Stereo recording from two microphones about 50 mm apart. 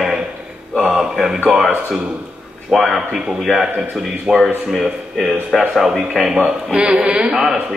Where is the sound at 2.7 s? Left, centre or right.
Centre; by 7.3 s right.